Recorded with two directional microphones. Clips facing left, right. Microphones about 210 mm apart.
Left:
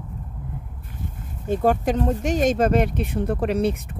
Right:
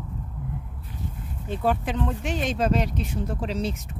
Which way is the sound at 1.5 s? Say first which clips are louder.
Left 6 dB; 45° left (ahead or behind).